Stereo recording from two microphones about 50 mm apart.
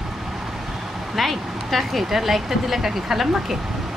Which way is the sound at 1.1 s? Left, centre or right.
Centre.